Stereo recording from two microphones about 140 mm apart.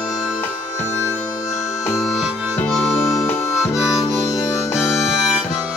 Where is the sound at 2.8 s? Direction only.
20° left (ahead or behind).